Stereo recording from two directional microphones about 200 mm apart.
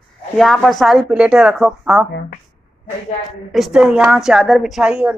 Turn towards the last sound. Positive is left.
turn(degrees=-5)  # may be behind; listen again after turning